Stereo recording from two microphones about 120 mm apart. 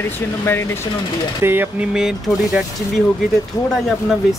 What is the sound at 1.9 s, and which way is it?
Speech, 5° right (ahead or behind).